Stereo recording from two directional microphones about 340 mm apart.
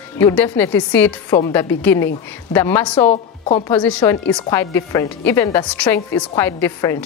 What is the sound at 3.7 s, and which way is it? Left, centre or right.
A woman's voice, centre.